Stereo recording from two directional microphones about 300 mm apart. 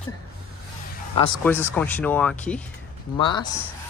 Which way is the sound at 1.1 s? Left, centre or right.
Centre.